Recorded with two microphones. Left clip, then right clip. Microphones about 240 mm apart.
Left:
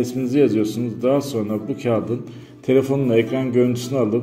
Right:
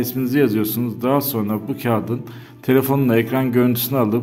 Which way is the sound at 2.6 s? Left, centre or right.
Right.